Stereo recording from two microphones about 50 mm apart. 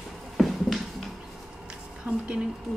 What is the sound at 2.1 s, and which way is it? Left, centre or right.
Speech, centre.